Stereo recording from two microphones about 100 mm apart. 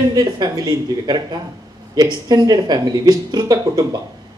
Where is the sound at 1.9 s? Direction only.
45° right (ahead or behind).